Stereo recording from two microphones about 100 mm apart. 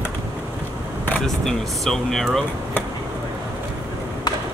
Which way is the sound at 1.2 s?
5° left (ahead or behind).